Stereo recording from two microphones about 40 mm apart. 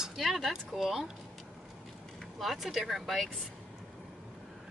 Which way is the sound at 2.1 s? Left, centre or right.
Centre.